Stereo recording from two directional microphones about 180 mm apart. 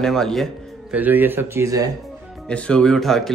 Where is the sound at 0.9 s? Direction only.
10° right (ahead or behind).